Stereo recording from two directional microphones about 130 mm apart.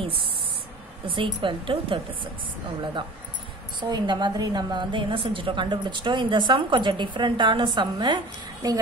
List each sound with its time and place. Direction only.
1.0 s a woman's voice: 40° right (ahead or behind)